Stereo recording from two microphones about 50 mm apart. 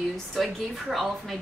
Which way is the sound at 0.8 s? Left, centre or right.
Centre.